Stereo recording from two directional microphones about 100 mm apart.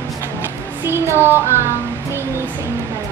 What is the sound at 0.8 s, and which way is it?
Child singing, 25° right (ahead or behind).